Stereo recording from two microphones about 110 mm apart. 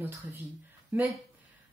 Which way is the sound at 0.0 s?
20° right (ahead or behind).